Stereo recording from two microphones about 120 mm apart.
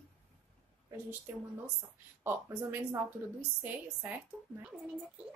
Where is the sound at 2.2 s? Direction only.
25° right (ahead or behind).